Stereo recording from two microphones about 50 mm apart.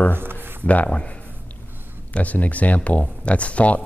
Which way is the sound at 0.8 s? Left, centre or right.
Left.